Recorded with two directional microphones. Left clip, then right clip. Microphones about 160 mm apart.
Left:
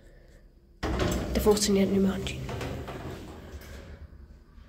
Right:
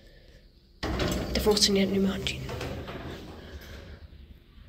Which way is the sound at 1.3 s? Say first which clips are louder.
Right 1 dB; 35° left (ahead or behind).